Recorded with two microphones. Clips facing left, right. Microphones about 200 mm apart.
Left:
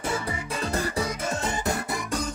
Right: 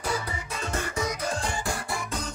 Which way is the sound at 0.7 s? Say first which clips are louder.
Left 1 dB; 35° left (ahead or behind).